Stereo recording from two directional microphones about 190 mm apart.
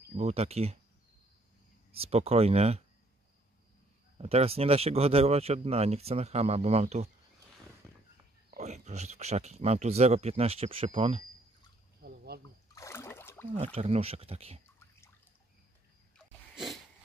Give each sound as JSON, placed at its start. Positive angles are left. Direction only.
{"t": 0.2, "sound": "speech", "side_deg": -35}
{"t": 1.9, "sound": "speech", "side_deg": -30}
{"t": 4.2, "sound": "speech", "side_deg": -30}
{"t": 8.5, "sound": "speech", "side_deg": -35}
{"t": 12.0, "sound": "a sound", "side_deg": -55}
{"t": 12.7, "sound": "a sound", "side_deg": 15}
{"t": 13.7, "sound": "speech", "side_deg": -30}